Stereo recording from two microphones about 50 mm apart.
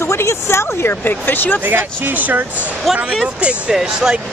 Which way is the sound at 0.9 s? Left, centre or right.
Left.